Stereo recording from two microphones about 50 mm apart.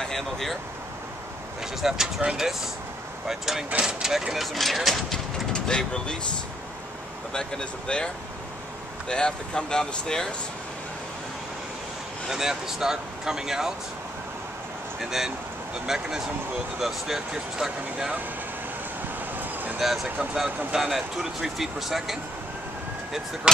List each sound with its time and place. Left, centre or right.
0.0 s speech: centre
1.8 s speech: centre
3.3 s speech: centre
5.1 s speech: centre
7.3 s speech: centre
9.1 s speech: centre
12.3 s speech: centre
15.0 s speech: centre
19.3 s a sound: right
19.8 s speech: centre
23.5 s speech: centre